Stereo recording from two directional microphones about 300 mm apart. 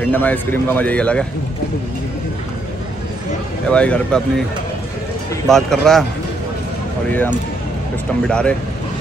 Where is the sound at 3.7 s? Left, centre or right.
Centre.